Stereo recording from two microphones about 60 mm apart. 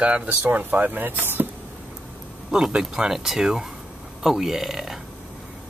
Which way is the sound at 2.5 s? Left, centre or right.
Centre.